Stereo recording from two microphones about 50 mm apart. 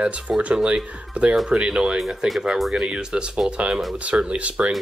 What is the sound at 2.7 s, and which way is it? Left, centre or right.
Speech, centre.